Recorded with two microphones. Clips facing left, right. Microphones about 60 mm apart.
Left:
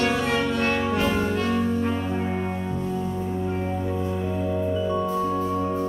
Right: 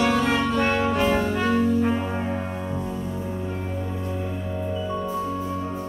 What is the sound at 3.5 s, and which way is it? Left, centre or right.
Music, left.